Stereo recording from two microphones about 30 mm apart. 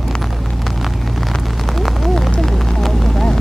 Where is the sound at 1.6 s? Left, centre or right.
Centre.